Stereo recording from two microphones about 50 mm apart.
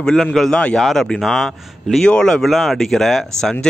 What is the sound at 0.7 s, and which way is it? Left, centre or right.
Speech, centre.